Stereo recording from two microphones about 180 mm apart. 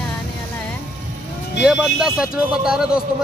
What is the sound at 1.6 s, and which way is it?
A man's voice, 5° right (ahead or behind).